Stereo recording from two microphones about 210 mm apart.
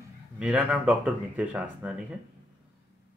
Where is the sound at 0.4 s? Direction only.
5° right (ahead or behind).